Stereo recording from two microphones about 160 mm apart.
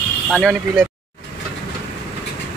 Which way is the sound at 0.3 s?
Centre (ahead or behind).